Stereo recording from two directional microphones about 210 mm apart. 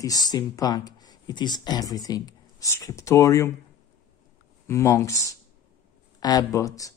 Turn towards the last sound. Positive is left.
turn(degrees=15)  # may be behind; listen again after turning